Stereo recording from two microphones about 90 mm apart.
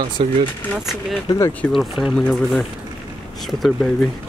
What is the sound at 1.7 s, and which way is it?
Speech, centre (ahead or behind).